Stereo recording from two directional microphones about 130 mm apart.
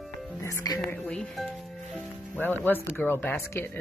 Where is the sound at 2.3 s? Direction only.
15° left (ahead or behind).